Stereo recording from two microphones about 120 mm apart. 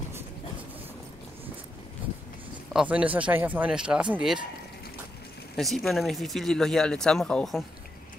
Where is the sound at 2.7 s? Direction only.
10° right (ahead or behind).